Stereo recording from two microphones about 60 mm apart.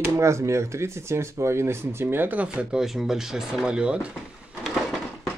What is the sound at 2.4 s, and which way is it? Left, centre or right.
Speech, centre.